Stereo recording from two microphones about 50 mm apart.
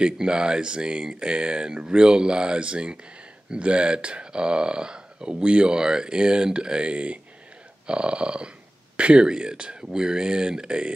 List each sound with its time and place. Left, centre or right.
0.0 s speech: centre